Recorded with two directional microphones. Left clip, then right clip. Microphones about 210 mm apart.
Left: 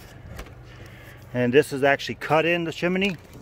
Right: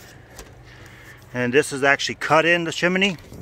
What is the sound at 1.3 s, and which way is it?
Speech, 10° left (ahead or behind).